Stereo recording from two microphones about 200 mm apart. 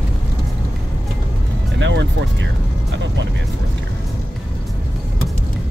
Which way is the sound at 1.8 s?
65° right (ahead or behind).